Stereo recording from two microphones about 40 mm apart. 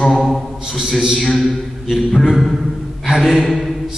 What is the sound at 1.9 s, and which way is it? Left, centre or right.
A man's voice, centre.